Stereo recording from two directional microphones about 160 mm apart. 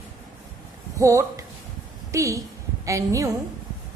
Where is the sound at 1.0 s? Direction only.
20° right (ahead or behind).